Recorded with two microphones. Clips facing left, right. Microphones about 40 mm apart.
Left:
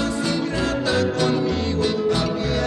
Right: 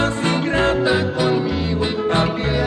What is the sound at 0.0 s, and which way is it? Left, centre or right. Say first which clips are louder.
Music: right 3 dB; right.